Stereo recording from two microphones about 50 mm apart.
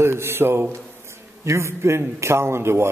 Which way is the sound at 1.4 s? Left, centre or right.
Right.